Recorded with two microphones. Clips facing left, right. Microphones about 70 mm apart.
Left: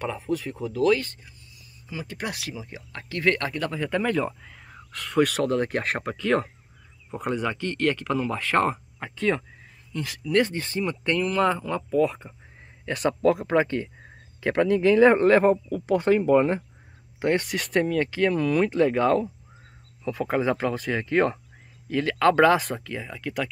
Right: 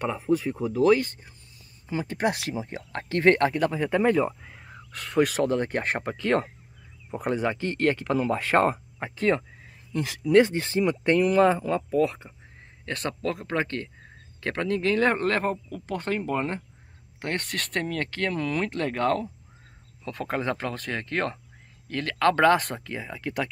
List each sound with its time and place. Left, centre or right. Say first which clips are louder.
0.0 s speech: right 3 dB; right
1.9 s speech: right 6 dB; right; by 4.3 s centre
4.4 s a sound: right 1 dB; centre
4.9 s speech: left 1 dB; centre
10.3 s speech: right 4 dB; centre
12.0 s speech: left 1 dB; centre
12.8 s speech: left 8 dB; centre